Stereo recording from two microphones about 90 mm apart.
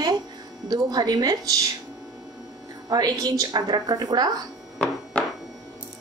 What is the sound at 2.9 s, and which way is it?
A woman's voice, 45° right (ahead or behind).